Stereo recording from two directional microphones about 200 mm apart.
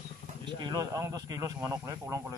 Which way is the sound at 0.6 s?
20° right (ahead or behind).